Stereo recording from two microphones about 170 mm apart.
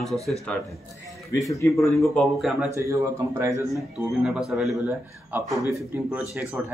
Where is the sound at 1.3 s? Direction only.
20° left (ahead or behind).